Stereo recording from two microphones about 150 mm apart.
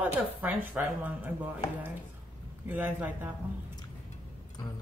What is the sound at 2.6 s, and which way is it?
Speech, 15° right (ahead or behind).